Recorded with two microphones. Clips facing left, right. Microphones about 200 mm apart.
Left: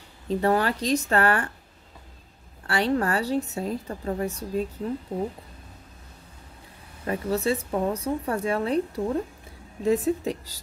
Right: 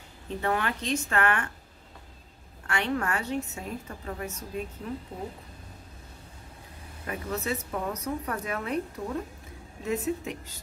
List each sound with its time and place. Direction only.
0.3 s speech: 35° left (ahead or behind)
2.6 s speech: 35° left (ahead or behind)
7.1 s speech: 30° left (ahead or behind)